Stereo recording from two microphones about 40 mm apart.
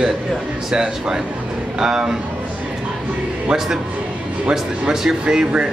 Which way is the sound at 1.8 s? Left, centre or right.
Centre.